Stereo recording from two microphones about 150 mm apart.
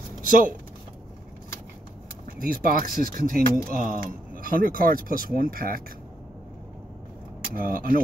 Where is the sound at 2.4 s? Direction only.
70° right (ahead or behind).